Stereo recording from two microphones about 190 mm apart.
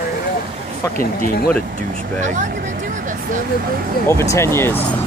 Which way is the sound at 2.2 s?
40° right (ahead or behind).